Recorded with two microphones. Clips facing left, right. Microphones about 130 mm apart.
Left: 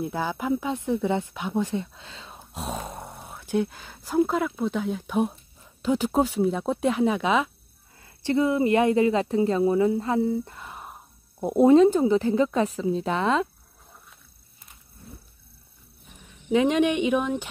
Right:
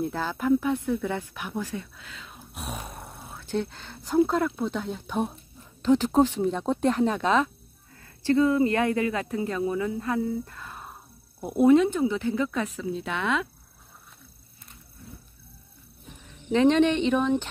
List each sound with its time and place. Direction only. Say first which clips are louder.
0.0 s speech: even; 15° left (ahead or behind)
8.0 s speech: right 1 dB; 20° left (ahead or behind)
16.5 s speech: right 1 dB; 10° left (ahead or behind)